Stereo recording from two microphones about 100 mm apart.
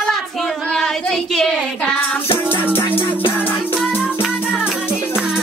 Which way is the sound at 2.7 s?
20° left (ahead or behind).